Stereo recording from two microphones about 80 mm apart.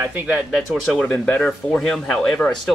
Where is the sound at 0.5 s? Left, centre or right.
Centre.